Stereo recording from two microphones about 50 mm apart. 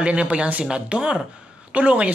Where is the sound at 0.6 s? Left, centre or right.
Centre.